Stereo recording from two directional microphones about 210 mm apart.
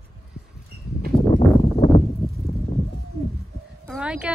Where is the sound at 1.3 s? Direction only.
30° left (ahead or behind).